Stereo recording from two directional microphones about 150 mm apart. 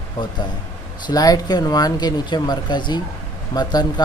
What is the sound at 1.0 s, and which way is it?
Speech, 25° left (ahead or behind).